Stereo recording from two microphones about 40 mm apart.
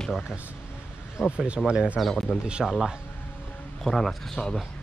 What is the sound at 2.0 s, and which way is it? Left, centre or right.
Speech, centre.